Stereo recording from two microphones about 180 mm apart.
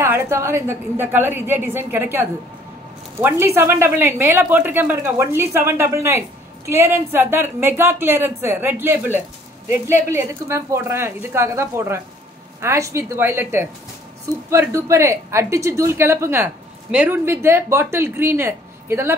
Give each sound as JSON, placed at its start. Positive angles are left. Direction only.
{"t": 0.0, "sound": "a woman's voice", "side_deg": -15}